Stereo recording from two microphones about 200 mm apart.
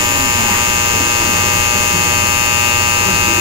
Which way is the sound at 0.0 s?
25° right (ahead or behind).